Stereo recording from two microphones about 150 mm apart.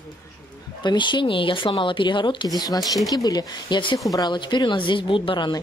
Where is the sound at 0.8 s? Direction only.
30° left (ahead or behind).